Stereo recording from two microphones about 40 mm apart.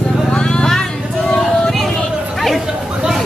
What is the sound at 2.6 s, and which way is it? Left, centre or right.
Chatter, centre.